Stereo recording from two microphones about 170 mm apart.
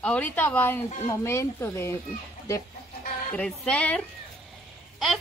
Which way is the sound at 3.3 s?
5° left (ahead or behind).